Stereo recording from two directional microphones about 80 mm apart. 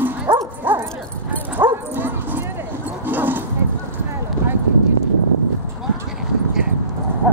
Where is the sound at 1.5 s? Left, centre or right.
Right.